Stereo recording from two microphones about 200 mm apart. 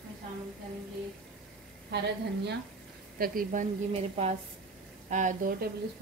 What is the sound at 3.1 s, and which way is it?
Speech, 45° right (ahead or behind).